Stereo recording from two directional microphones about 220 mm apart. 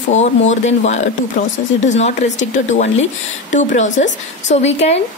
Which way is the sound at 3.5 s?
35° left (ahead or behind).